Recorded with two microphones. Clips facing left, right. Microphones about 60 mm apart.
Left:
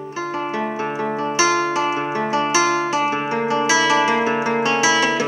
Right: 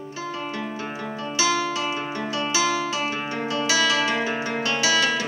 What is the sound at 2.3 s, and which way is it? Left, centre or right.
Guitar, left.